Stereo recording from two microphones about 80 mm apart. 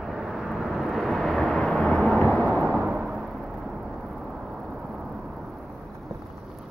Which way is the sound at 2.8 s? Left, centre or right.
Centre.